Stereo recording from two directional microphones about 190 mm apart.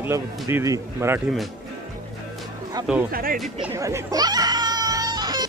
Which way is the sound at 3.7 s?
15° right (ahead or behind).